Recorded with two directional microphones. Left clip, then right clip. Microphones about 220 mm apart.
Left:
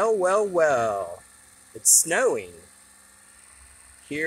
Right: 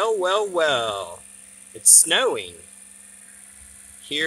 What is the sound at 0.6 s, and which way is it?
Speech, centre (ahead or behind).